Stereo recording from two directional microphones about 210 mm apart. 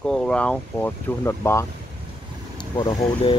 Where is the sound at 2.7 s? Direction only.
25° left (ahead or behind).